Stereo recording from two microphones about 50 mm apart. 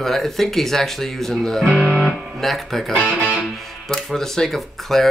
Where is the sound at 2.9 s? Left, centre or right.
Left; by 5.1 s centre.